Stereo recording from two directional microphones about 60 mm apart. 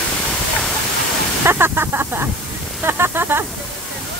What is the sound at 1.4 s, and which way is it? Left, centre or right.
Speech, right.